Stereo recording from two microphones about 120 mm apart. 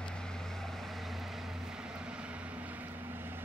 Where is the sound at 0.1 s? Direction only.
5° left (ahead or behind).